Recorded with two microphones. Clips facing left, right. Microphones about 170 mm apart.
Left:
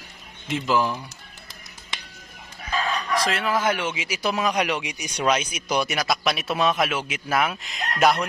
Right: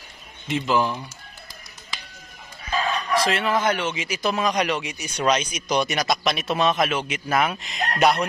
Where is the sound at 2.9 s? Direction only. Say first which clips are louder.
Right 3 dB; centre (ahead or behind).